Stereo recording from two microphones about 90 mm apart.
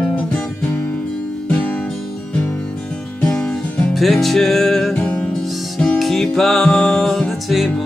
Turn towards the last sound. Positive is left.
turn(degrees=0)  # may be behind; listen again after turning